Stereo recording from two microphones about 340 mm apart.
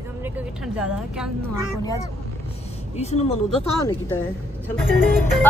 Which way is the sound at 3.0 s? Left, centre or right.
Centre.